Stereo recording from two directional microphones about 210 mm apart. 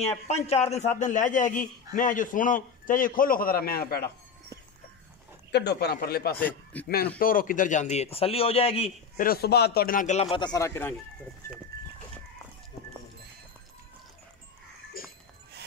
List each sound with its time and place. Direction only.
0.0 s a man's voice: 30° left (ahead or behind); by 4.1 s 45° left (ahead or behind)
5.5 s speech: 50° left (ahead or behind)
6.4 s speech: 5° left (ahead or behind)
7.2 s a man's voice: 40° left (ahead or behind)
9.2 s a man's voice: 45° left (ahead or behind); by 11.0 s 10° left (ahead or behind)
15.0 s a sound: 45° left (ahead or behind)